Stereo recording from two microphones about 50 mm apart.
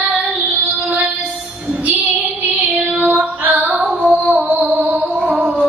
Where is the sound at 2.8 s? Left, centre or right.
Right.